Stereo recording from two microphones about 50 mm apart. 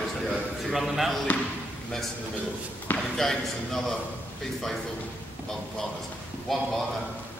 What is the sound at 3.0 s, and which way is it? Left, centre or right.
Speech, centre.